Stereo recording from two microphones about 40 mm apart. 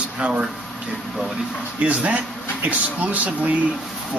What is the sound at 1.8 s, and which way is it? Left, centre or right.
Speech, right.